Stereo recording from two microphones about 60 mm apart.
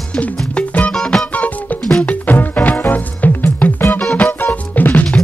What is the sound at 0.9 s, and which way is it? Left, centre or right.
Music, centre.